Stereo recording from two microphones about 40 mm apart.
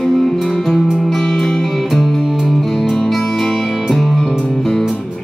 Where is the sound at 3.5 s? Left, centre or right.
Centre.